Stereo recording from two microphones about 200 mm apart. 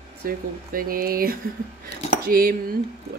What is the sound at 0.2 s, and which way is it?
A woman's voice, 45° right (ahead or behind).